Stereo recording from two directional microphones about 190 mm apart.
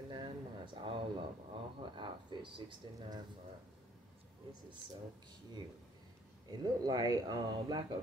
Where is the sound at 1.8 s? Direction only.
25° right (ahead or behind).